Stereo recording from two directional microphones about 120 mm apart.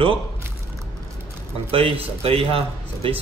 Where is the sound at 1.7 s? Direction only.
55° right (ahead or behind).